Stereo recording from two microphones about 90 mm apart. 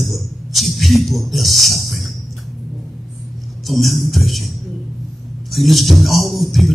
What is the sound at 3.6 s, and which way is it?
A man's voice, centre (ahead or behind).